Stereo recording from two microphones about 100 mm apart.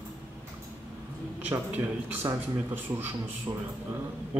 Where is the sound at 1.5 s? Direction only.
20° right (ahead or behind).